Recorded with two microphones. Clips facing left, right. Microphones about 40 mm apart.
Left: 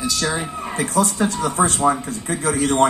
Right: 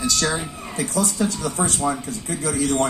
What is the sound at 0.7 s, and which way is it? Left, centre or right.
Speech, left.